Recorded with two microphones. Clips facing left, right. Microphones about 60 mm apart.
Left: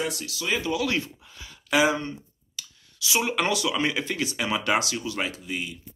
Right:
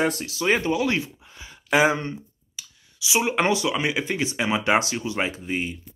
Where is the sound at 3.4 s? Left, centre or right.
Right.